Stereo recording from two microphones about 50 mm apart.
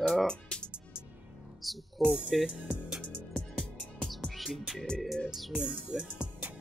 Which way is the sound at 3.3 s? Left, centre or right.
Left.